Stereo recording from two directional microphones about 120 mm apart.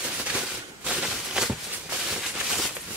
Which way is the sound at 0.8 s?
5° right (ahead or behind).